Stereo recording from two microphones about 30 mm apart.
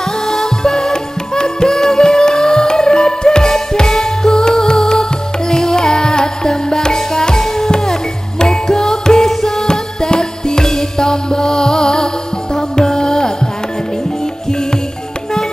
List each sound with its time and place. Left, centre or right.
0.3 s music: centre
1.3 s music: left